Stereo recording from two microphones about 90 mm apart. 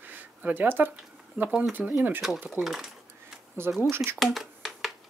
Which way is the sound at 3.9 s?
25° right (ahead or behind).